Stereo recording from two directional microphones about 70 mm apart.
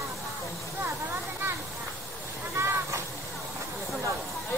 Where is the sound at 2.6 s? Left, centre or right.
Right.